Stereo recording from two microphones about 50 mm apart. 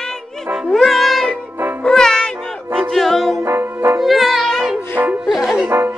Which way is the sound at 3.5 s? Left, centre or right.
Right.